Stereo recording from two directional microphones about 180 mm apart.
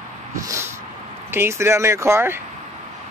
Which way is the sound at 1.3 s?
15° right (ahead or behind).